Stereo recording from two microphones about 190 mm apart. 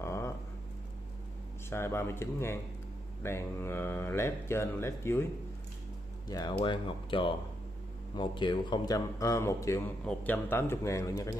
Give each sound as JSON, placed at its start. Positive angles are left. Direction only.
{"t": 0.0, "sound": "a sound", "side_deg": 15}
{"t": 1.7, "sound": "speech", "side_deg": 15}
{"t": 6.2, "sound": "speech", "side_deg": 20}